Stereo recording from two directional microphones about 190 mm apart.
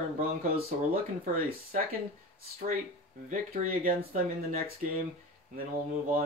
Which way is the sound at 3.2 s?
45° right (ahead or behind).